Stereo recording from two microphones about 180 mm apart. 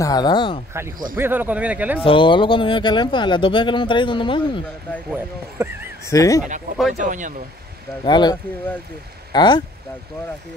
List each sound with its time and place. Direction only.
0.0 s speech: 20° left (ahead or behind)
1.1 s speech: 10° right (ahead or behind)
2.0 s speech: 25° left (ahead or behind)
5.1 s speech: 10° right (ahead or behind)
6.0 s speech: 20° left (ahead or behind)
7.1 s speech: 45° right (ahead or behind)
8.0 s speech: 25° left (ahead or behind)